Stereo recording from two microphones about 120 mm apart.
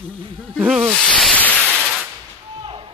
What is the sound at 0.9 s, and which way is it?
Speech, 5° left (ahead or behind).